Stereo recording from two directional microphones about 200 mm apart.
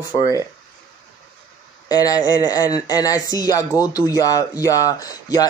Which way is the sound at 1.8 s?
20° left (ahead or behind).